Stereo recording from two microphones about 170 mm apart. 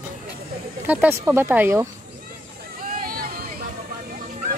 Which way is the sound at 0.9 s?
10° right (ahead or behind).